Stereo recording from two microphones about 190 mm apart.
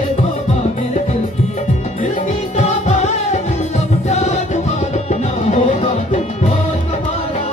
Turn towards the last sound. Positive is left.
turn(degrees=35)  # may be behind; listen again after turning